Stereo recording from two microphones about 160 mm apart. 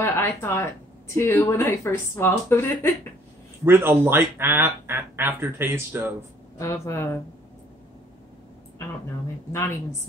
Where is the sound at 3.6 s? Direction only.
15° right (ahead or behind).